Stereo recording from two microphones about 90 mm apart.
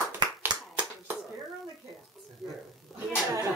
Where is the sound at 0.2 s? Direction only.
50° right (ahead or behind).